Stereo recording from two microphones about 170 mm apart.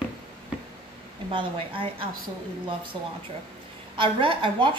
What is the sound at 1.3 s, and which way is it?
Speech, 30° right (ahead or behind).